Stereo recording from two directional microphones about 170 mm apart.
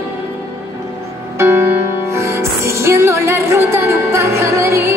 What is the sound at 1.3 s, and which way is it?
Music, 15° right (ahead or behind).